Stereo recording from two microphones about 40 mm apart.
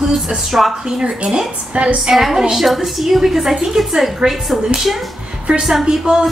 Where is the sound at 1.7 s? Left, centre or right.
Right.